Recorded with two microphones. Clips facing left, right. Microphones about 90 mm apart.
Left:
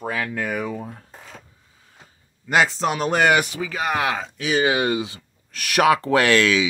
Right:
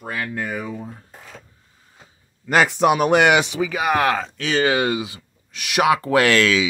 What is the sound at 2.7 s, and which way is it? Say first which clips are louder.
Speech: right 7 dB; 65° right (ahead or behind).